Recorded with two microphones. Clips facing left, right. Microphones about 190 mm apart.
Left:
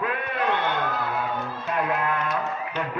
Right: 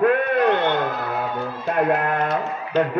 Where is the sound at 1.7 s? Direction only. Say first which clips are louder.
Right 6 dB; 55° right (ahead or behind).